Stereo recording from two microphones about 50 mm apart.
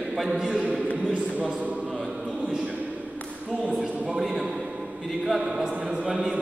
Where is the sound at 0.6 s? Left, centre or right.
Right.